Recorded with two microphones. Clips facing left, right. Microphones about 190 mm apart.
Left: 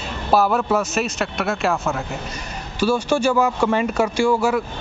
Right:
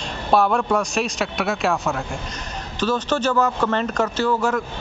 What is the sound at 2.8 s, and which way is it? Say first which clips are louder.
A man's voice: left 3 dB; 10° left (ahead or behind).